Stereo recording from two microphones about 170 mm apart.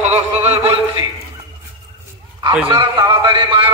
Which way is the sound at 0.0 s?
40° right (ahead or behind).